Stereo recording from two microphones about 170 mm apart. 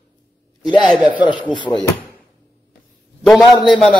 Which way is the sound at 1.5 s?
25° left (ahead or behind).